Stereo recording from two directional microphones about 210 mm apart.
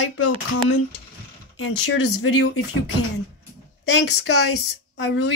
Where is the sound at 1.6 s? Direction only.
65° left (ahead or behind).